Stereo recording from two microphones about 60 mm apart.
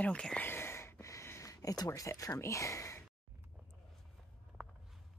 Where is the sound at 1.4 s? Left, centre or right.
Left.